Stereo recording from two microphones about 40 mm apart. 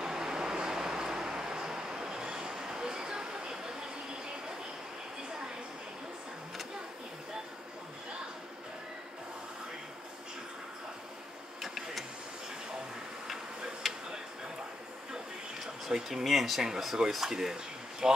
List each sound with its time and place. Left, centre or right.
0.0 s vehicle: centre
2.0 s vehicle: centre
2.9 s a sound: centre
11.6 s printer: centre
13.8 s a sound: centre
15.6 s speech: centre
18.0 s speech: centre